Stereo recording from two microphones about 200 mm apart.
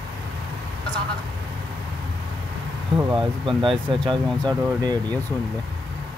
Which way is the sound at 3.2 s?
25° right (ahead or behind).